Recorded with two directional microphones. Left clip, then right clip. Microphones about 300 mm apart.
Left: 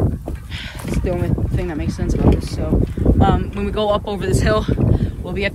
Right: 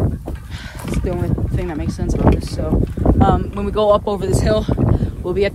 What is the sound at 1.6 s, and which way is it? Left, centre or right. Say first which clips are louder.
Speech: even; centre.